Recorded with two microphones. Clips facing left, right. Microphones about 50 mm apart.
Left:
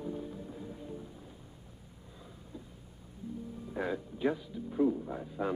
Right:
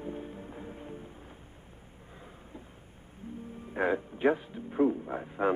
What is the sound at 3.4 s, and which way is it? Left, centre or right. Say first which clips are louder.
Music: right 7 dB; right.